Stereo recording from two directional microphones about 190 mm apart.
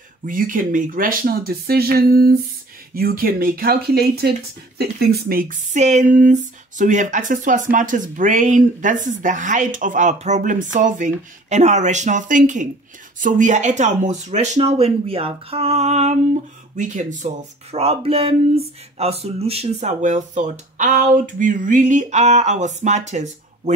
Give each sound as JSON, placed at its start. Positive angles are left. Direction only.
{"t": 0.3, "sound": "speech", "side_deg": -45}
{"t": 5.3, "sound": "speech", "side_deg": -45}